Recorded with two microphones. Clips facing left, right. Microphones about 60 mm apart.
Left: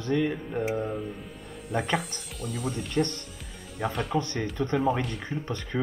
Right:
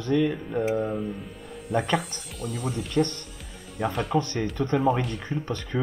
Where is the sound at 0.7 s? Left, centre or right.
Centre.